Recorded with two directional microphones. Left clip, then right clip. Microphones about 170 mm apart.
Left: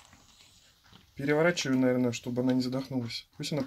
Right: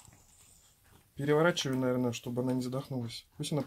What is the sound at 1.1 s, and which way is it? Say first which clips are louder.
Speech: left 1 dB; 10° right (ahead or behind).